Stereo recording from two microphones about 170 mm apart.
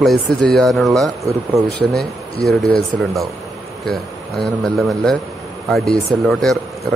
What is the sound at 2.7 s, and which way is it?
Speech, 5° left (ahead or behind).